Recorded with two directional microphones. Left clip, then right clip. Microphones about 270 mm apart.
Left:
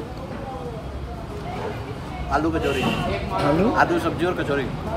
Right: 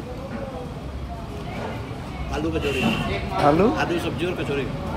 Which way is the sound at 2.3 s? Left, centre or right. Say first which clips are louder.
Left 3 dB; centre.